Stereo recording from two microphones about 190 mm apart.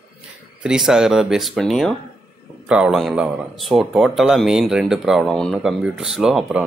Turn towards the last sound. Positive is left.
turn(degrees=-5)  # may be behind; listen again after turning